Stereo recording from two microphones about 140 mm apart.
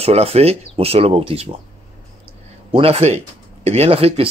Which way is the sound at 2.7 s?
45° right (ahead or behind).